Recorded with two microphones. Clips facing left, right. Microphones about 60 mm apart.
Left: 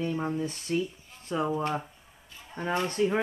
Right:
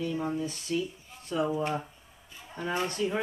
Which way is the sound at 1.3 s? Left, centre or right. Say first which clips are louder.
Even; left.